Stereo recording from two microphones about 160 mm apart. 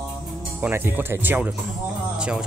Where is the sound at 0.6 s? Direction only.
15° right (ahead or behind).